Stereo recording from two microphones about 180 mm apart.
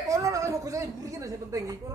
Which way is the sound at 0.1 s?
20° right (ahead or behind).